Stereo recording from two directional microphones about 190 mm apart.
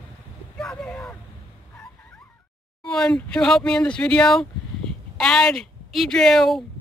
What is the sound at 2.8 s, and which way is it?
Speech, 5° left (ahead or behind).